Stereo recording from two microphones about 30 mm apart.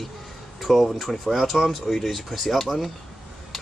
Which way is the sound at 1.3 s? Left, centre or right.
Centre.